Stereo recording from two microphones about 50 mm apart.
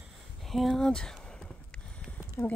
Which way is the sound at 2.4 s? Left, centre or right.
Centre.